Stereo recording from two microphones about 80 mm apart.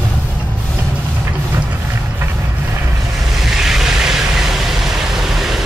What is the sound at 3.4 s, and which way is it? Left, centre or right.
Vehicle, centre.